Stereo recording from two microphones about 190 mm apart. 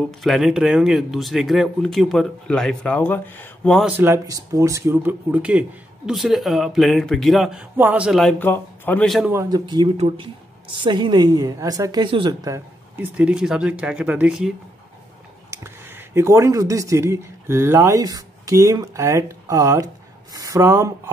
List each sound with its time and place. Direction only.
0.2 s speech: centre (ahead or behind)
3.9 s speech: 10° right (ahead or behind)
9.3 s a woman's voice: 20° right (ahead or behind)
15.5 s speech: 15° right (ahead or behind)